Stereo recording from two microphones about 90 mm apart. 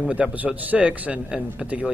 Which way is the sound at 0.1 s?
15° right (ahead or behind).